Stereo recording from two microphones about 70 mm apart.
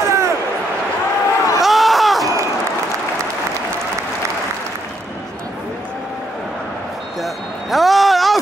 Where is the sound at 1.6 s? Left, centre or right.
Centre.